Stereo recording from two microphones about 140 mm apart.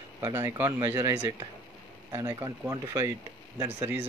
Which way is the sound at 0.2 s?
20° right (ahead or behind).